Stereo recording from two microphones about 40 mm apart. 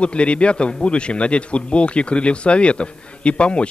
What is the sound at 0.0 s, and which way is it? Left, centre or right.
A man's voice, left.